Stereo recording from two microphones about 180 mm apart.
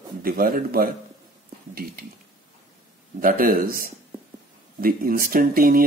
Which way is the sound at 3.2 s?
50° right (ahead or behind).